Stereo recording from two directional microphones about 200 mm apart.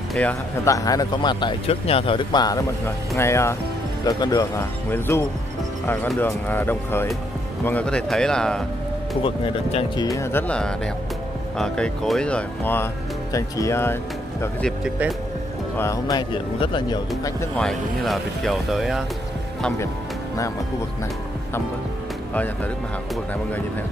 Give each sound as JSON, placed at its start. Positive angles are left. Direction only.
{"t": 0.1, "sound": "speech", "side_deg": 5}
{"t": 9.2, "sound": "speech", "side_deg": 30}
{"t": 10.0, "sound": "speech", "side_deg": 15}
{"t": 14.8, "sound": "speech", "side_deg": -5}
{"t": 15.8, "sound": "speech", "side_deg": 15}
{"t": 17.6, "sound": "speech", "side_deg": 0}